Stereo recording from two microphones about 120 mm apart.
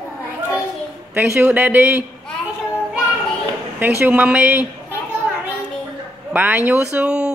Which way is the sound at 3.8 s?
15° right (ahead or behind).